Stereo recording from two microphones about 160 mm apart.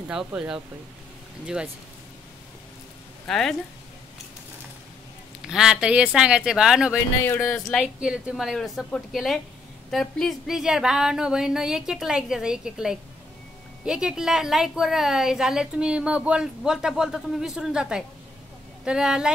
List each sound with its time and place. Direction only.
0.1 s a woman's voice: 5° right (ahead or behind)
3.3 s a woman's voice: 5° left (ahead or behind)
5.4 s a woman's voice: 5° right (ahead or behind)
7.2 s speech: 15° left (ahead or behind)
7.7 s a woman's voice: 5° right (ahead or behind)